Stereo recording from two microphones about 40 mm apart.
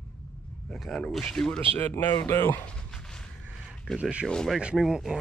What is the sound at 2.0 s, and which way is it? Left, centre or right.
Speech, left.